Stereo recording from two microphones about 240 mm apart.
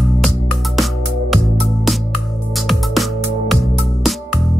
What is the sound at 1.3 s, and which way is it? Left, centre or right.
Music, centre.